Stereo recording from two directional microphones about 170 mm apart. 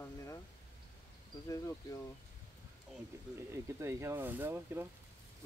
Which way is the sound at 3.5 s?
15° right (ahead or behind).